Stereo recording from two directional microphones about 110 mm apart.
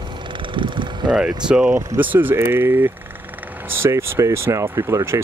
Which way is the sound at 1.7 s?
30° right (ahead or behind).